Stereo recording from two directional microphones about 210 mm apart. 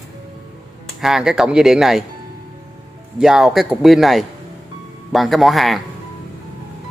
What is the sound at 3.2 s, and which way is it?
A man's voice, centre (ahead or behind).